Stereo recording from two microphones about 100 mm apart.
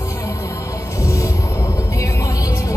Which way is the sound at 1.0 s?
30° left (ahead or behind).